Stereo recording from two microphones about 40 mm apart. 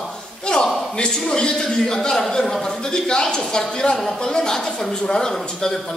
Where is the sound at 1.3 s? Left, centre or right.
Centre.